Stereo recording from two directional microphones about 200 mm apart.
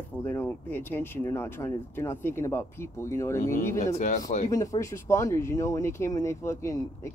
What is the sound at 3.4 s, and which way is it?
Speech, 40° left (ahead or behind).